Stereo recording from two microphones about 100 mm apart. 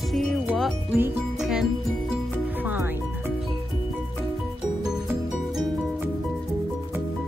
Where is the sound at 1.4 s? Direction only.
5° right (ahead or behind).